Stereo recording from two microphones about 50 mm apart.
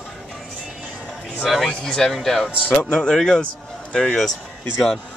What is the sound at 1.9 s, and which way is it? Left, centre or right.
A man's voice, centre.